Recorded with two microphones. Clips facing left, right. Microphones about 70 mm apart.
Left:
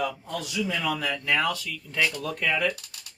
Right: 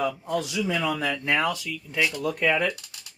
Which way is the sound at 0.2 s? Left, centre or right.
Right.